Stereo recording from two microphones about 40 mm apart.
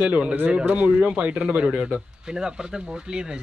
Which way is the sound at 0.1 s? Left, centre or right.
Right.